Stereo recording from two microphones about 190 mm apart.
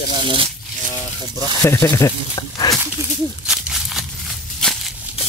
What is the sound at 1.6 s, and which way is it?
Speech, 10° left (ahead or behind).